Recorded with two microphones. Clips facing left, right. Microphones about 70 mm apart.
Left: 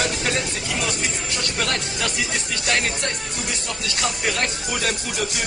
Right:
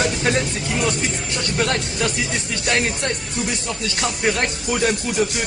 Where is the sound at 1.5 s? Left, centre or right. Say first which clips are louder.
Right 6 dB; right.